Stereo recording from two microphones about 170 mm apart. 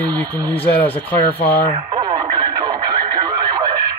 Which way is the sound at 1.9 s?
30° right (ahead or behind).